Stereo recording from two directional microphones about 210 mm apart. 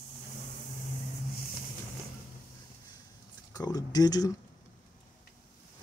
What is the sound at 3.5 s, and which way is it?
Speech, 20° left (ahead or behind).